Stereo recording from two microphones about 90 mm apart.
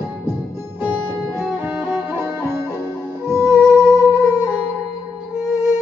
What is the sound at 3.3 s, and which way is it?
Music, 30° right (ahead or behind).